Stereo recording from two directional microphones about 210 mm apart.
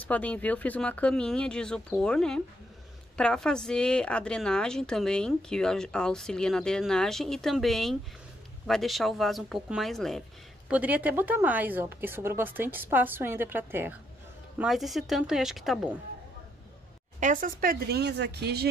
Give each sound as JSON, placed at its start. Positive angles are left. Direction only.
{"t": 0.0, "sound": "a woman's voice", "side_deg": 5}
{"t": 17.2, "sound": "speech", "side_deg": -40}